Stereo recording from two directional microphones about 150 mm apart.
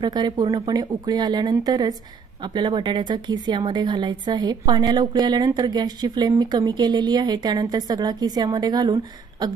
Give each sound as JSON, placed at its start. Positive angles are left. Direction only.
{"t": 0.0, "sound": "speech", "side_deg": -30}